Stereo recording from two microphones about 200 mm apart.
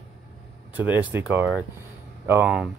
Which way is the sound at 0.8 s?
10° right (ahead or behind).